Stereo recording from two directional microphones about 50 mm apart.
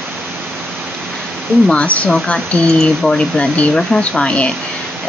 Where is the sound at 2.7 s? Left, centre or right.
Centre.